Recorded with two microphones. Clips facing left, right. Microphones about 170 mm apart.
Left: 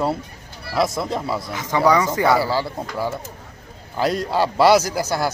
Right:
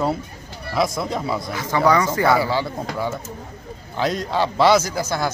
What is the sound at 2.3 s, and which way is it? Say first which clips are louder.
A man's voice: even; 5° left (ahead or behind).